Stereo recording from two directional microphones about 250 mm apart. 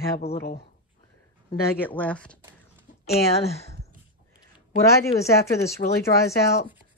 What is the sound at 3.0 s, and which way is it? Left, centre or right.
Speech, left.